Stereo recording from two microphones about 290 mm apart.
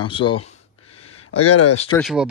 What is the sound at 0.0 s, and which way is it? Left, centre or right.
Speech, centre.